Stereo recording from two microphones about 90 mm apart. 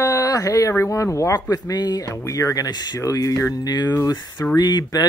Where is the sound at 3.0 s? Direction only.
40° left (ahead or behind).